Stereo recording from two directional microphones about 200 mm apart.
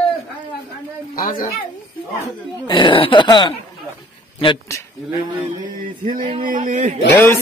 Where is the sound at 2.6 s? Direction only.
25° left (ahead or behind).